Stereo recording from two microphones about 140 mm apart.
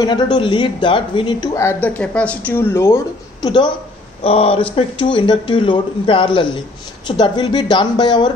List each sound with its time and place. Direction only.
0.0 s speech: 35° left (ahead or behind)
1.5 s speech: 20° left (ahead or behind)
3.4 s speech: 35° left (ahead or behind)
4.2 s speech: 45° left (ahead or behind)